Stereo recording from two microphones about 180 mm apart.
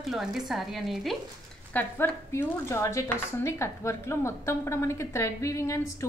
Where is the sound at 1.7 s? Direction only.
10° left (ahead or behind).